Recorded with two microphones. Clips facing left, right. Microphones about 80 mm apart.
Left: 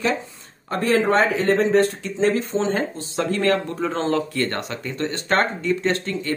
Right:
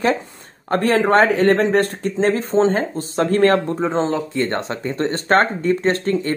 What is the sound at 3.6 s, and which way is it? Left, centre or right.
Speech, right.